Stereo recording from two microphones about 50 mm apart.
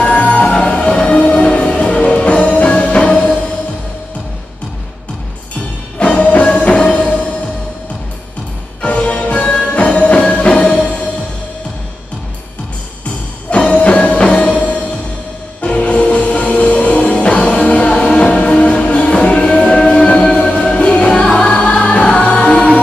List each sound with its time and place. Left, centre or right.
0.0 s music: left
5.9 s music: left
8.8 s music: left
13.5 s music: left